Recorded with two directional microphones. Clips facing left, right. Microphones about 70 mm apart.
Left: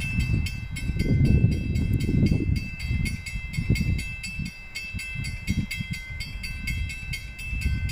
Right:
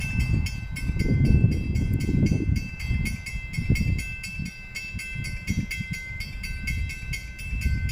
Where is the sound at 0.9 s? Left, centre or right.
Centre.